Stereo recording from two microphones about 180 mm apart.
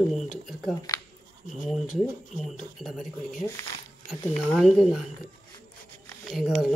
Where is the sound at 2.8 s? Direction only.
Centre (ahead or behind).